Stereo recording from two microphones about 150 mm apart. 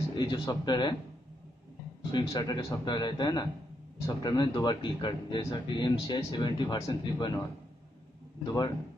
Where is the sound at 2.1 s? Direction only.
30° left (ahead or behind).